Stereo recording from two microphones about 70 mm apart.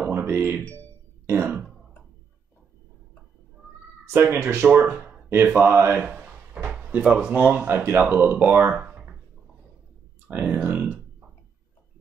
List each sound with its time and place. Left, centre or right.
0.0 s music: right
1.2 s throat clearing: right
4.1 s speech: right
4.6 s speech: right
6.1 s speech: centre
10.2 s speech: right